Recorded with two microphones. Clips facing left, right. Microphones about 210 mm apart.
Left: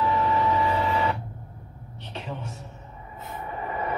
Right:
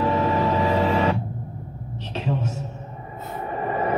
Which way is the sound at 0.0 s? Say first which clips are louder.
Right 3 dB; 80° right.